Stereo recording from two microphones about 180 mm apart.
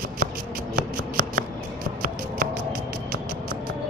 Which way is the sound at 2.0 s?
55° right (ahead or behind).